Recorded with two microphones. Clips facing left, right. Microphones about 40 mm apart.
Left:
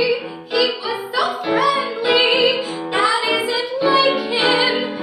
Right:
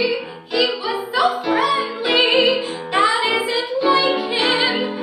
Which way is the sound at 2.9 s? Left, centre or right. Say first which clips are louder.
Right 1 dB; centre.